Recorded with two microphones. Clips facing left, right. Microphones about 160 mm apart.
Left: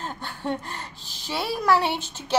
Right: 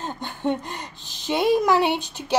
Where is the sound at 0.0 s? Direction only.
20° right (ahead or behind).